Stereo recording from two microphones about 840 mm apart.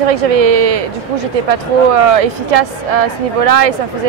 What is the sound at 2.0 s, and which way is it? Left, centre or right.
Speech, right.